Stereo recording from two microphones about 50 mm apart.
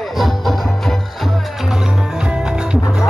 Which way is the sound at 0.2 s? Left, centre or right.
Centre.